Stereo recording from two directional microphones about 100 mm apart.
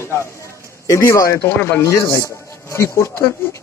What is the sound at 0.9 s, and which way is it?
Speech, 30° left (ahead or behind).